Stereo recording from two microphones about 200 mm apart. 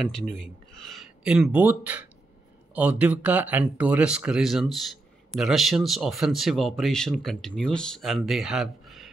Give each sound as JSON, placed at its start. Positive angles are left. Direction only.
{"t": 0.0, "sound": "speech", "side_deg": 0}